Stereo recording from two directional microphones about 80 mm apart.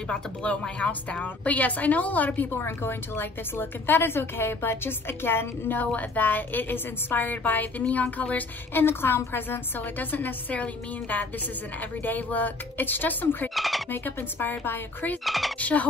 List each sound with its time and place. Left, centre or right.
0.1 s a woman's voice: centre
13.6 s squawk: centre
13.8 s a woman's voice: left
15.2 s speech: centre
15.6 s a woman's voice: centre